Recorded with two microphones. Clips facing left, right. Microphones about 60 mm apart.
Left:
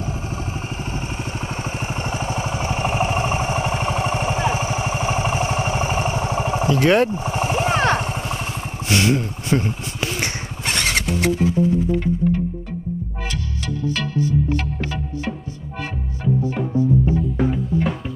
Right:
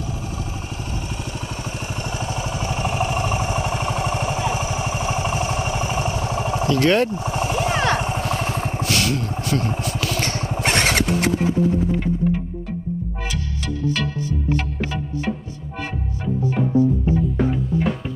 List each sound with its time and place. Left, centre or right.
2.1 s vehicle: left
6.8 s speech: centre
7.1 s vehicle: left
8.8 s a sound: left
9.9 s vehicle: left
10.6 s music: right
16.4 s music: centre